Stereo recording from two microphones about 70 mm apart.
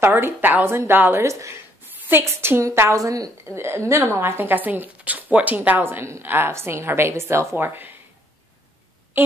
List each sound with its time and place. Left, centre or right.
0.0 s a woman's voice: right
1.2 s a woman's voice: right
9.1 s a sound: right